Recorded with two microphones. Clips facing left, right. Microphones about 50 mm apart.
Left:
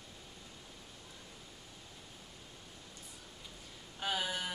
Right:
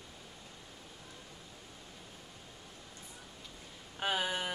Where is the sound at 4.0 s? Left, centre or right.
Right.